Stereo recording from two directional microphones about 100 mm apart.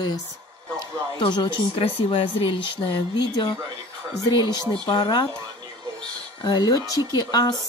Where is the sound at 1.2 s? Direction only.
50° left (ahead or behind).